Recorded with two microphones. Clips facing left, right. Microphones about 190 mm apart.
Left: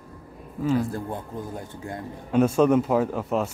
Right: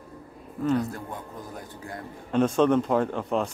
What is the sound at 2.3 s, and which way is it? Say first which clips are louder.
Speech: left 2 dB; 10° left (ahead or behind).